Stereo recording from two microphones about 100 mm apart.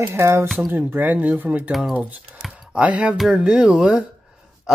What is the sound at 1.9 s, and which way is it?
Speech, 15° right (ahead or behind).